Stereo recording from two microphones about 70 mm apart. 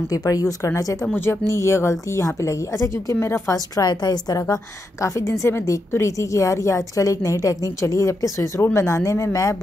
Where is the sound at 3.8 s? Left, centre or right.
Left.